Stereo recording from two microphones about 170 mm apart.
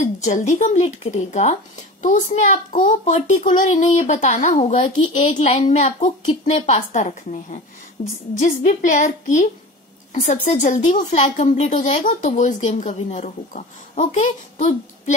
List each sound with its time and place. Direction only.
0.0 s speech: 45° left (ahead or behind)